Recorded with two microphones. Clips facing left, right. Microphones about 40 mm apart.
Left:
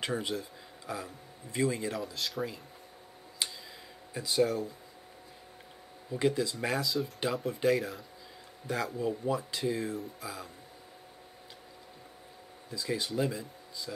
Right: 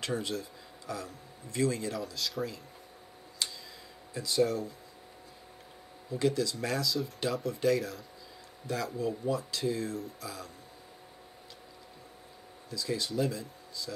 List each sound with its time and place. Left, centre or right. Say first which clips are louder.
0.0 s speech: even; left
3.4 s tick: even; left
4.1 s speech: even; left
6.1 s speech: even; left
12.6 s speech: even; left